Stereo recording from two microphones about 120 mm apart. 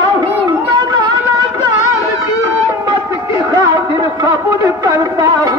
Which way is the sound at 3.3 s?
25° right (ahead or behind).